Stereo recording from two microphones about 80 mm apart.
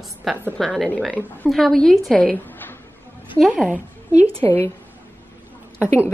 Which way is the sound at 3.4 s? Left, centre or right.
Right.